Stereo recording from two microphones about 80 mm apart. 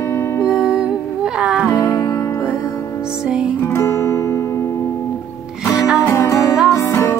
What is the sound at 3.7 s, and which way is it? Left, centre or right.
Music, left.